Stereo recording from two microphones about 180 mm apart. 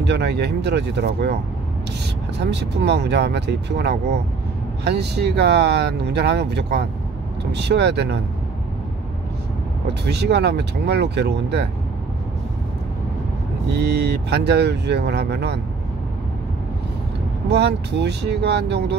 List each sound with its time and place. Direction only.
0.0 s speech: 70° right (ahead or behind)
2.3 s speech: 70° right (ahead or behind)
10.0 s speech: 70° right (ahead or behind)
13.7 s speech: 70° right (ahead or behind)
17.5 s speech: 70° right (ahead or behind)